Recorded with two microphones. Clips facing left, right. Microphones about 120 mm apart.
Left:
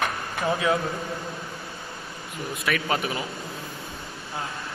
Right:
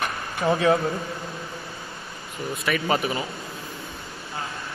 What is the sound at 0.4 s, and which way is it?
Speech, 25° right (ahead or behind).